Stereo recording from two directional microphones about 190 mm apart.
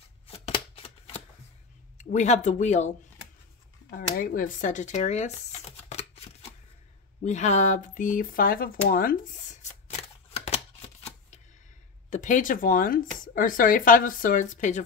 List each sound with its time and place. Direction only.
0.7 s shuffling cards: 30° left (ahead or behind)
2.0 s speech: 35° left (ahead or behind)
3.9 s speech: 50° left (ahead or behind)
5.9 s a sound: 35° left (ahead or behind)
7.2 s speech: 40° left (ahead or behind)
10.4 s a sound: 35° left (ahead or behind)
12.1 s speech: 40° left (ahead or behind)